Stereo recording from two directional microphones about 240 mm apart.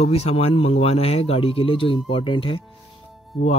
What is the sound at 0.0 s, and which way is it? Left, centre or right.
Speech, left.